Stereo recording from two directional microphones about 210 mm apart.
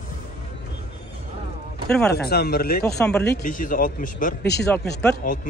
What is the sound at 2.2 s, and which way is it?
Speech, 50° left (ahead or behind).